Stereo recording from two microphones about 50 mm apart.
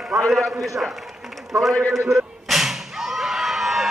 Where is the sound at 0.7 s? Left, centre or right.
Centre.